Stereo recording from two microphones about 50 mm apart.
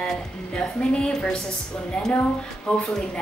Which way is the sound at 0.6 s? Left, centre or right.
Left.